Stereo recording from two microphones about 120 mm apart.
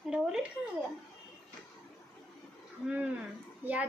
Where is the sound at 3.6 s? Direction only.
15° right (ahead or behind).